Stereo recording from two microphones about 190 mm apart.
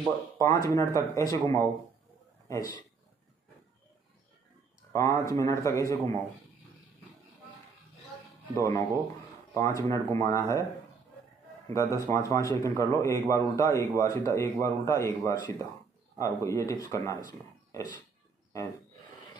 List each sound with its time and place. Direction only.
0.4 s a man's voice: 15° left (ahead or behind)
4.9 s a man's voice: 15° left (ahead or behind)
8.5 s a man's voice: 15° left (ahead or behind)
11.7 s a man's voice: 15° left (ahead or behind)